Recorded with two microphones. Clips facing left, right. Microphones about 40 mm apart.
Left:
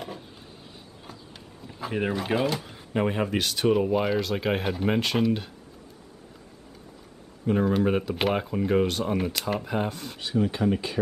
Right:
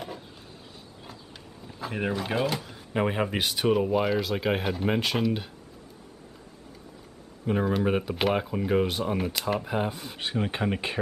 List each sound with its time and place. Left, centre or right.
1.0 s drawer open or close: centre
2.9 s speech: centre
7.4 s speech: centre
10.1 s speech: right